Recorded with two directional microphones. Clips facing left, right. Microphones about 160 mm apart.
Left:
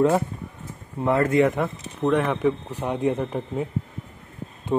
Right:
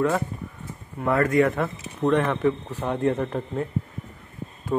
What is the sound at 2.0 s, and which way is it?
A man's voice, 5° left (ahead or behind).